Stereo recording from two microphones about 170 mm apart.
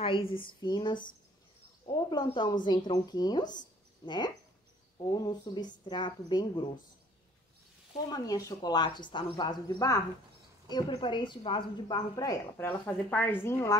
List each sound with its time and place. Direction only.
0.0 s a woman's voice: 30° left (ahead or behind)
8.1 s a woman's voice: 20° left (ahead or behind)